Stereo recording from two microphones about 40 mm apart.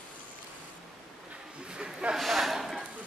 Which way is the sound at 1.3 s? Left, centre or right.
Right.